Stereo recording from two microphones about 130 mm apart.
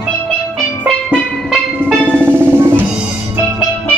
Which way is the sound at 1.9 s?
15° right (ahead or behind).